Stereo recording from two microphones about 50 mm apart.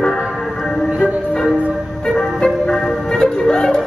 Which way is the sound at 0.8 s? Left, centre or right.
Centre.